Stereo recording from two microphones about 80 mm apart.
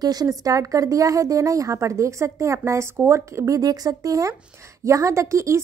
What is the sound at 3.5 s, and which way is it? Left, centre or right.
A woman's voice, right.